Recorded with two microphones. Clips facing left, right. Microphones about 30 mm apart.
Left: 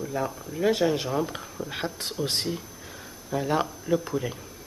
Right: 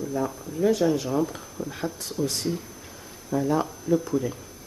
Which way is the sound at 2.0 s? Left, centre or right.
Left.